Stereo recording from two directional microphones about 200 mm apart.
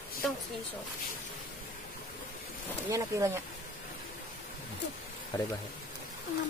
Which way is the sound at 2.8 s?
15° right (ahead or behind).